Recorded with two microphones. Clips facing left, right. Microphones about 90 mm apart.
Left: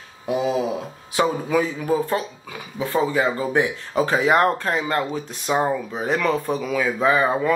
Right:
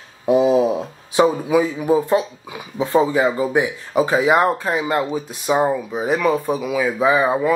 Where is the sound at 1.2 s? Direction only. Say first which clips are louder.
Right 4 dB; 15° right (ahead or behind).